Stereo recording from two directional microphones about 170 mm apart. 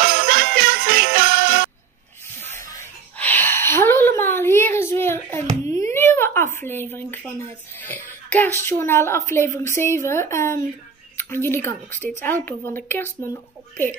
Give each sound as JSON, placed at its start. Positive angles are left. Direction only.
{"t": 0.0, "sound": "jingle bell", "side_deg": -60}
{"t": 2.7, "sound": "a sound", "side_deg": 10}
{"t": 11.1, "sound": "speech", "side_deg": 15}